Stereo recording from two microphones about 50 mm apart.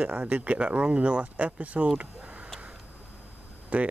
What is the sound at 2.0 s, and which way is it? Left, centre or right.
Tick-tock, right.